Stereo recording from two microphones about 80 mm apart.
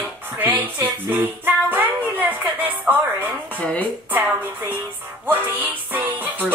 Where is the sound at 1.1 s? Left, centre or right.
Right.